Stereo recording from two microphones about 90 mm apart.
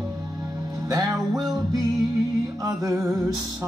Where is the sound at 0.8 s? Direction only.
50° right (ahead or behind).